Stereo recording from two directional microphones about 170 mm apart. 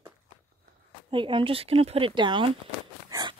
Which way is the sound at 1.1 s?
30° right (ahead or behind).